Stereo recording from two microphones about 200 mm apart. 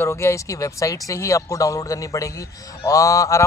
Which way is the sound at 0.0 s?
15° left (ahead or behind).